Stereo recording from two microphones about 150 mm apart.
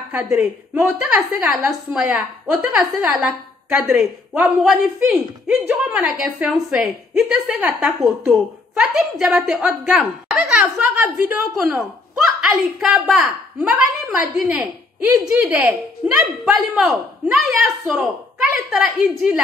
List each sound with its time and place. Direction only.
0.1 s a woman's voice: 10° right (ahead or behind)
12.4 s a woman's voice: 5° right (ahead or behind)